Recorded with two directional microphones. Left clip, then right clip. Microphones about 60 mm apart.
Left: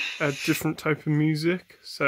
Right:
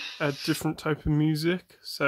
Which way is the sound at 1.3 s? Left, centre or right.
Right.